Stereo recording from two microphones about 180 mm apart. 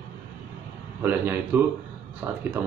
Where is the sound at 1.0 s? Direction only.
10° right (ahead or behind).